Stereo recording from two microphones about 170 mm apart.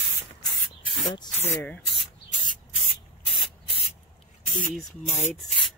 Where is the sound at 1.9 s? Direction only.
30° left (ahead or behind).